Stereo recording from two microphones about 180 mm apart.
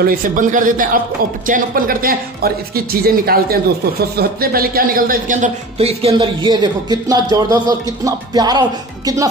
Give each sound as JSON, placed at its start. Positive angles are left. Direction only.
{"t": 0.0, "sound": "a man's voice", "side_deg": -50}